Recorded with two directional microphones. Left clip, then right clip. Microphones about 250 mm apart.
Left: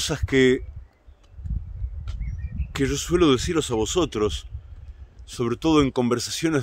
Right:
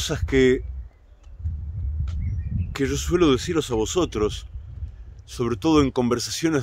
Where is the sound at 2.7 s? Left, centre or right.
Centre.